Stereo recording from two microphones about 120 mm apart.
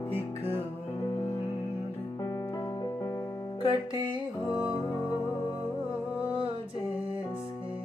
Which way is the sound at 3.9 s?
40° right (ahead or behind).